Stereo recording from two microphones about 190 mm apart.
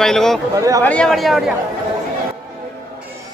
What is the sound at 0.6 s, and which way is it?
Speech, 20° right (ahead or behind).